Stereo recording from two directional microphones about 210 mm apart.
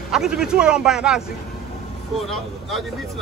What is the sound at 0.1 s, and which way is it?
Speech, 5° right (ahead or behind).